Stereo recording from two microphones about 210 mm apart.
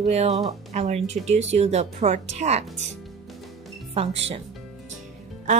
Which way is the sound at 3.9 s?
30° right (ahead or behind).